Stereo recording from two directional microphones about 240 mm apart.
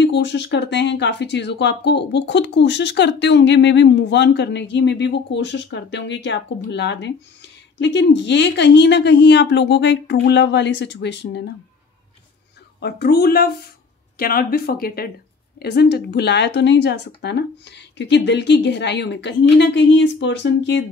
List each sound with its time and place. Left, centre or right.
0.0 s speech: left
12.8 s speech: left